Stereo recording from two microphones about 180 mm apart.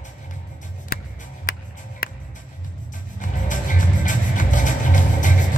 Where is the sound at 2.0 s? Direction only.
55° left (ahead or behind).